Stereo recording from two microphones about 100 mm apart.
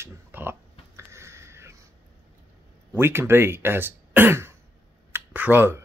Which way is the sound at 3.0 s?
25° right (ahead or behind).